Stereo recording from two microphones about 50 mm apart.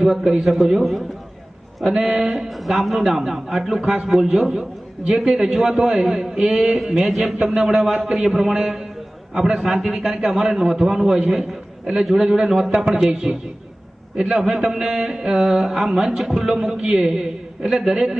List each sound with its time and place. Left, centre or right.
0.0 s a man's voice: centre
0.4 s a man's voice: centre
2.2 s a man's voice: centre
2.6 s a man's voice: centre
8.4 s a man's voice: centre